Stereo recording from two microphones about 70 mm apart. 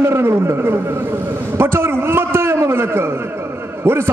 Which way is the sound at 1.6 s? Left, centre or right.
Right.